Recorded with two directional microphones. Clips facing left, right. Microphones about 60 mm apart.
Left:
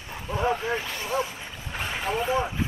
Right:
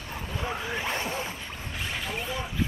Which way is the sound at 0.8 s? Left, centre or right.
Right.